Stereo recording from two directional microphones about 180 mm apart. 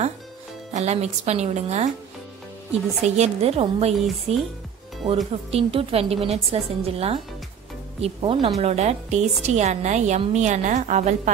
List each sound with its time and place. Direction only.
0.7 s a woman's voice: 40° right (ahead or behind)
3.2 s a woman's voice: 35° right (ahead or behind)